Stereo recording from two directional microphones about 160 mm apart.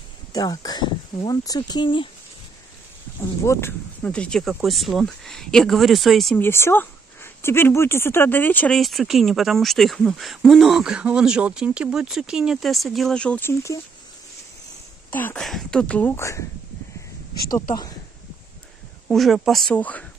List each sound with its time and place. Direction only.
0.3 s speech: 25° left (ahead or behind)
3.4 s speech: 10° left (ahead or behind)
6.4 s speech: 15° left (ahead or behind)
15.0 s a sound: 10° left (ahead or behind)
15.4 s speech: 5° left (ahead or behind)
17.5 s speech: 25° left (ahead or behind)
19.0 s speech: centre (ahead or behind)